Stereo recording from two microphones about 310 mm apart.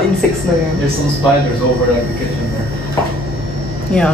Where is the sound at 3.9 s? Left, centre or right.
Centre.